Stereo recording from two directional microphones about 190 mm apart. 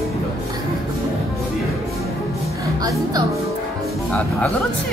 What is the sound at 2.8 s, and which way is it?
Speech, 20° right (ahead or behind).